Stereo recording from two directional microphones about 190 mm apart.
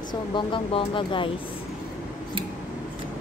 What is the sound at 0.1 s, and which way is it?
Speech, 25° left (ahead or behind).